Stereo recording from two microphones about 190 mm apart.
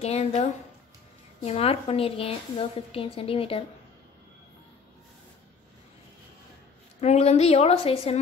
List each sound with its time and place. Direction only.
0.0 s a woman's voice: 35° left (ahead or behind)
7.0 s a woman's voice: 35° left (ahead or behind)